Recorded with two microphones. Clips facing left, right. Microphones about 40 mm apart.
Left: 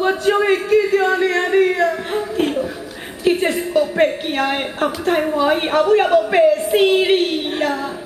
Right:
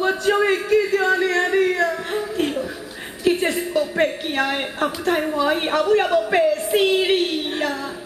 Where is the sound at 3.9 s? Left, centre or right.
Centre.